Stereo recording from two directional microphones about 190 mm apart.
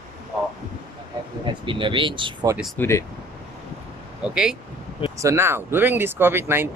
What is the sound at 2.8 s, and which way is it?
Speech, 15° left (ahead or behind).